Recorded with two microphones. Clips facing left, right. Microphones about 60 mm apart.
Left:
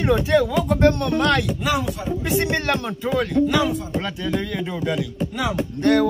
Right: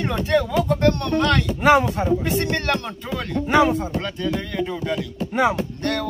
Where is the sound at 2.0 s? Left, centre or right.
Centre.